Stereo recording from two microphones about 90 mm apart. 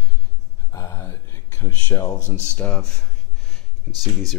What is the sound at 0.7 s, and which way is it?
Speech, 35° left (ahead or behind).